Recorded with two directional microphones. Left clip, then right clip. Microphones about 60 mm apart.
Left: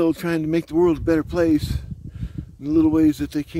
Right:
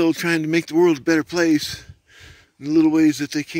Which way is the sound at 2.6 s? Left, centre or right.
Left.